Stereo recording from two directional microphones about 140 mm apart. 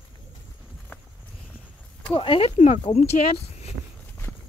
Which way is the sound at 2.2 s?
40° left (ahead or behind).